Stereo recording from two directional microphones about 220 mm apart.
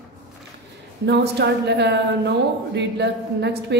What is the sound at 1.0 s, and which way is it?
A woman's voice, 50° right (ahead or behind).